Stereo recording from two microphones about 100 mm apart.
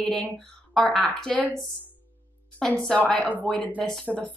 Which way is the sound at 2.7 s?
10° left (ahead or behind).